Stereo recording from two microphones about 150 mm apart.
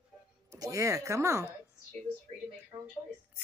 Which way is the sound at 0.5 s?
20° right (ahead or behind).